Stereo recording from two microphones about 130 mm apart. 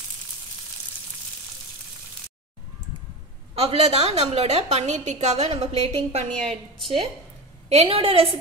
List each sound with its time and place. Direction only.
3.5 s a woman's voice: 50° right (ahead or behind)
7.7 s a woman's voice: 50° right (ahead or behind)